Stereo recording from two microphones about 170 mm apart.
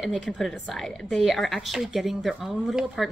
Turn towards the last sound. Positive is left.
turn(degrees=0)  # may be behind; listen again after turning